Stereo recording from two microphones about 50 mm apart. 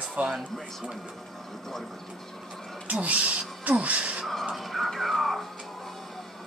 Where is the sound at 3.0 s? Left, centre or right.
Right.